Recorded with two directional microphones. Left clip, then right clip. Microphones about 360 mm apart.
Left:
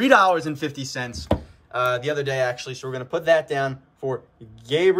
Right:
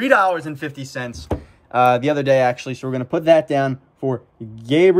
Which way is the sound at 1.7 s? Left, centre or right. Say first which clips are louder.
Right 7 dB; centre.